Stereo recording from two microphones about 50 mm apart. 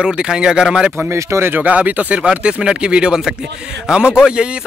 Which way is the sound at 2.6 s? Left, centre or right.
Centre.